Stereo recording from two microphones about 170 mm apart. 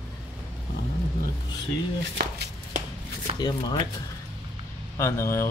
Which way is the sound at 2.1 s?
75° right (ahead or behind).